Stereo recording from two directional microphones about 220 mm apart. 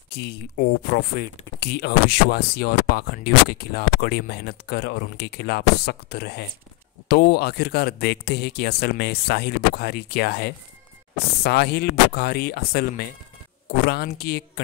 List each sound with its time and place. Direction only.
0.1 s speech: 50° left (ahead or behind)